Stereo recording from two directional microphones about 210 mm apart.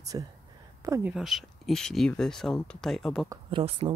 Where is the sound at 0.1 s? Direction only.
20° right (ahead or behind).